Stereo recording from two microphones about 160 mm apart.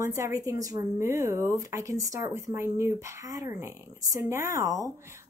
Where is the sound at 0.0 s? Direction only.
20° right (ahead or behind).